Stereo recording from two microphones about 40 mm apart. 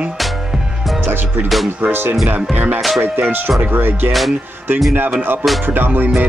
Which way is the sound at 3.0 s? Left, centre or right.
Right.